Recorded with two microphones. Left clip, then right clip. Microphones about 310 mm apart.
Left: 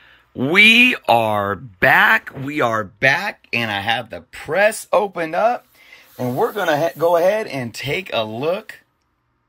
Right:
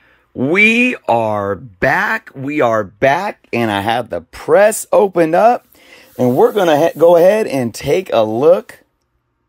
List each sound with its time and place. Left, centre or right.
0.4 s speech: centre